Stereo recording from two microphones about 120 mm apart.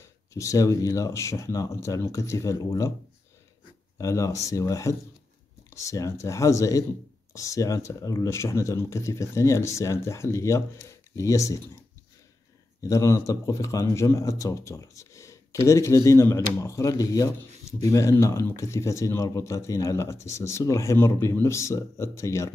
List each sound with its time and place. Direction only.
0.0 s speech: 25° left (ahead or behind)
4.0 s speech: 25° left (ahead or behind)
12.8 s speech: 25° left (ahead or behind)